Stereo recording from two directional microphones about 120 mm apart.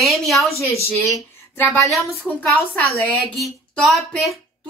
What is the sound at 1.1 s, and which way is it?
Speech, 25° left (ahead or behind).